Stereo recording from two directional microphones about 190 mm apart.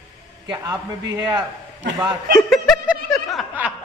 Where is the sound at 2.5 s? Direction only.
Centre (ahead or behind).